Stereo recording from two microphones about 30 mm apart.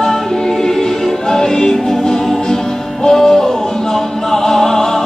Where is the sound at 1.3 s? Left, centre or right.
Centre.